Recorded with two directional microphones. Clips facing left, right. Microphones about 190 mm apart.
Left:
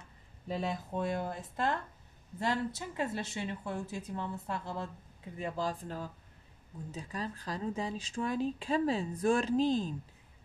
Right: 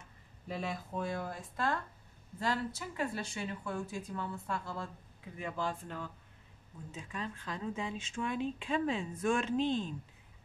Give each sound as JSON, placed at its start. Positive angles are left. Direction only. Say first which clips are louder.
{"t": 0.5, "sound": "speech", "louder": "left 3 dB", "side_deg": 30}
{"t": 5.4, "sound": "speech", "louder": "left 2 dB", "side_deg": 35}